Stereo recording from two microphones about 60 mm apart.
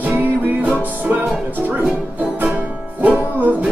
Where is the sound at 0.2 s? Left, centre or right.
Right.